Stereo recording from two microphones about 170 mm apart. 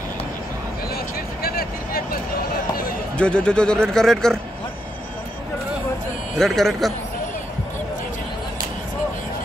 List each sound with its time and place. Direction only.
0.9 s a sound: 60° left (ahead or behind)
3.2 s speech: 5° left (ahead or behind)
6.3 s speech: centre (ahead or behind)